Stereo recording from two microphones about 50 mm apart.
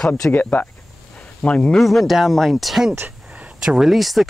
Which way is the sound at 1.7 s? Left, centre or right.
Centre.